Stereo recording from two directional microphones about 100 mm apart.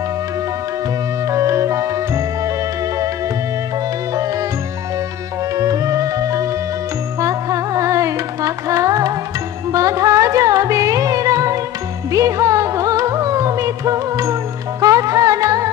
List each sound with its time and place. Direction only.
1.3 s music: 30° right (ahead or behind)
5.6 s music: 35° right (ahead or behind)
7.2 s carnatic music: 30° right (ahead or behind)
9.7 s music: 35° right (ahead or behind)